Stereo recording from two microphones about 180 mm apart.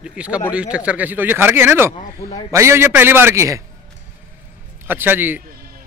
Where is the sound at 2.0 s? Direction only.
40° left (ahead or behind).